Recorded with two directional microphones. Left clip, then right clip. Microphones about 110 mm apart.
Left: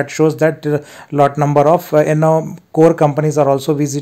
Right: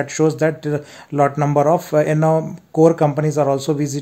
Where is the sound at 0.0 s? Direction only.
25° left (ahead or behind).